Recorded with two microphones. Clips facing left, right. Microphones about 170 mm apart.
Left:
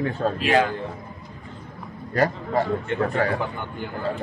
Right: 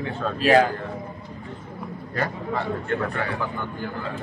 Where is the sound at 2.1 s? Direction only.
40° left (ahead or behind).